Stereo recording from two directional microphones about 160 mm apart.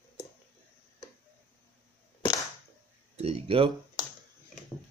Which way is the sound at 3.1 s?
40° right (ahead or behind).